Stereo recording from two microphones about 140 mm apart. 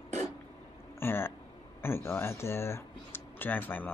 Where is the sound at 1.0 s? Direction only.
15° left (ahead or behind).